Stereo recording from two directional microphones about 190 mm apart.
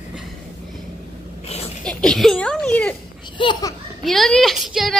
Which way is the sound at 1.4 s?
35° left (ahead or behind).